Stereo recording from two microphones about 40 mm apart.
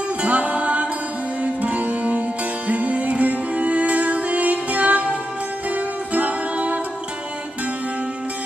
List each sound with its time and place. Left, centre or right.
0.2 s music: right
6.1 s music: right